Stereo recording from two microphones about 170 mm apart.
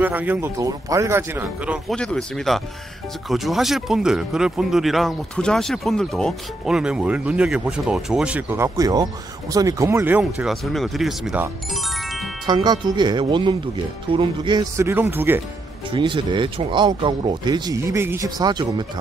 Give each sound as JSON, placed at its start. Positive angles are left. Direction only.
{"t": 0.0, "sound": "speech", "side_deg": -10}
{"t": 2.0, "sound": "speech", "side_deg": 5}
{"t": 11.7, "sound": "music", "side_deg": 0}
{"t": 12.4, "sound": "speech", "side_deg": -25}
{"t": 15.9, "sound": "speech", "side_deg": -30}